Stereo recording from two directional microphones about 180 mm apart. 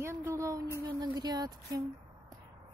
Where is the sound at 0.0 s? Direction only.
15° right (ahead or behind).